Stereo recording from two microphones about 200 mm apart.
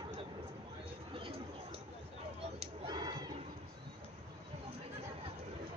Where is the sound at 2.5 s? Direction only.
20° right (ahead or behind).